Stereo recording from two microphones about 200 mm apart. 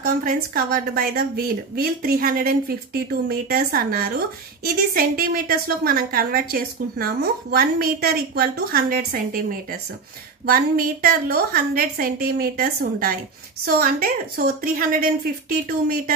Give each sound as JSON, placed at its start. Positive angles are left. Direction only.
{"t": 0.0, "sound": "a woman's voice", "side_deg": -45}